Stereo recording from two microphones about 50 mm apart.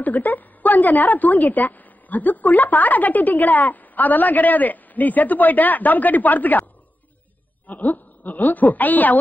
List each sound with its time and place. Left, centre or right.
0.0 s a woman's voice: left
7.6 s a woman's voice: left